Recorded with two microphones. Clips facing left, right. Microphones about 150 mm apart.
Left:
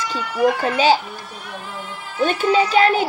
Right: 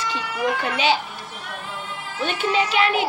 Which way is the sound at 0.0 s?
40° left (ahead or behind).